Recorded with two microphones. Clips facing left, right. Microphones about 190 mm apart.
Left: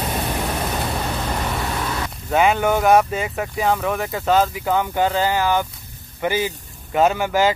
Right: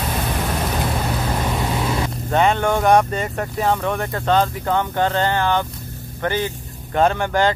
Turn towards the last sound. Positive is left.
turn(degrees=5)  # may be behind; listen again after turning